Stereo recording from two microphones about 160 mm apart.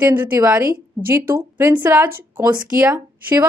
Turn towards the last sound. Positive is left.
turn(degrees=-15)  # may be behind; listen again after turning